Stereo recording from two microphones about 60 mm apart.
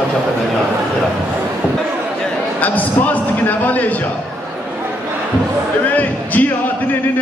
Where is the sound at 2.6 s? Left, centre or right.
Left.